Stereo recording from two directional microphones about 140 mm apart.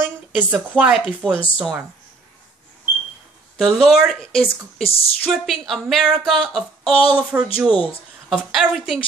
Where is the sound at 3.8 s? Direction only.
Centre (ahead or behind).